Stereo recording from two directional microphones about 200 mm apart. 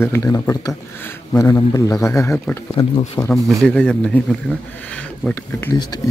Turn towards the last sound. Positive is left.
turn(degrees=20)  # may be behind; listen again after turning